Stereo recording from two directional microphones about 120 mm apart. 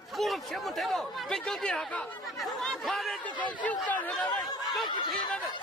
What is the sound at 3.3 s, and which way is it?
Speech, 40° left (ahead or behind).